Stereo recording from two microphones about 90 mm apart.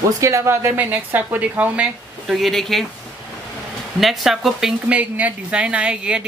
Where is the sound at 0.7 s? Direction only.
20° right (ahead or behind).